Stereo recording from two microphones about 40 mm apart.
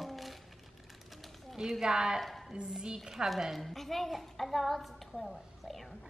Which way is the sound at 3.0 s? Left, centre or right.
Centre.